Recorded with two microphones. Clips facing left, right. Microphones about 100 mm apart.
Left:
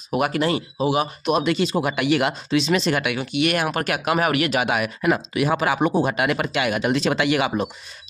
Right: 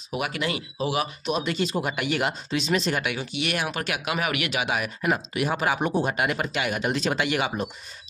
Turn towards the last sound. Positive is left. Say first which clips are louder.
# left 5 dB
turn(degrees=90)